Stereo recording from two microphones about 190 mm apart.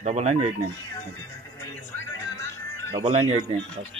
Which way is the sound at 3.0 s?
35° right (ahead or behind).